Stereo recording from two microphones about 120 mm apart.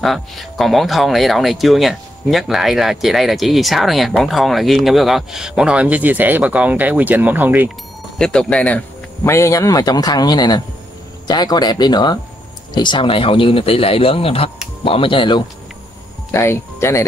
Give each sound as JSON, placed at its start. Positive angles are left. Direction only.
{"t": 0.0, "sound": "speech", "side_deg": 0}
{"t": 8.2, "sound": "speech", "side_deg": 5}
{"t": 9.3, "sound": "speech", "side_deg": 25}
{"t": 16.3, "sound": "speech", "side_deg": 20}